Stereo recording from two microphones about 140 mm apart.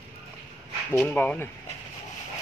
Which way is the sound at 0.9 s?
15° left (ahead or behind).